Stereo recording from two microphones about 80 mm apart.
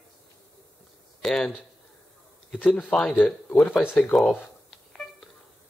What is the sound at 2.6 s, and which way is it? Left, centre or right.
Speech, centre.